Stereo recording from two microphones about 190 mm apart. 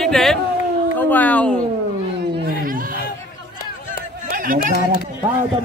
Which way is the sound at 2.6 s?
50° right (ahead or behind).